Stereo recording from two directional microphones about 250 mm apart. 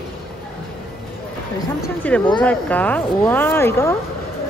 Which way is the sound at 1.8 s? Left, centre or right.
Centre.